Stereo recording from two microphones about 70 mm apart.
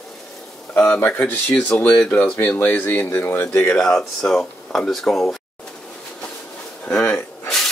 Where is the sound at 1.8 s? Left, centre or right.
Centre.